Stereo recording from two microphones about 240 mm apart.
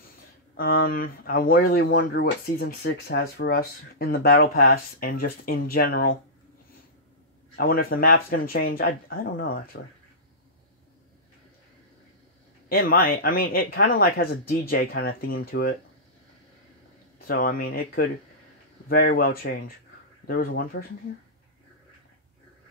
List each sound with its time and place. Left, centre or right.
0.6 s speech: left
7.5 s speech: left
12.6 s speech: left
17.3 s speech: left